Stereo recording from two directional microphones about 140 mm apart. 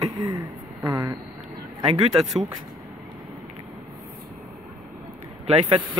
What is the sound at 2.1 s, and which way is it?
Speech, centre (ahead or behind).